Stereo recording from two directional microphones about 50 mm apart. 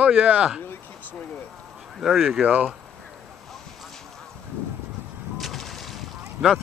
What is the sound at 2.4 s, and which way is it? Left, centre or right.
Speech, right.